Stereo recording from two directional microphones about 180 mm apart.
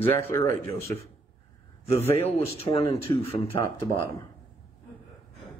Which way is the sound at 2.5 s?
35° left (ahead or behind).